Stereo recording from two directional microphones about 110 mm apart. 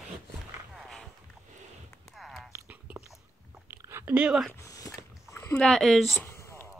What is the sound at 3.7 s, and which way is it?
Chewing, 25° right (ahead or behind).